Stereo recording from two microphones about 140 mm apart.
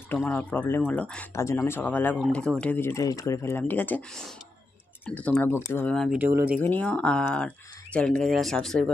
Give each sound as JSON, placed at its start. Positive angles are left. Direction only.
{"t": 0.1, "sound": "speech", "side_deg": 10}
{"t": 6.1, "sound": "speech", "side_deg": -10}
{"t": 6.6, "sound": "speech", "side_deg": 10}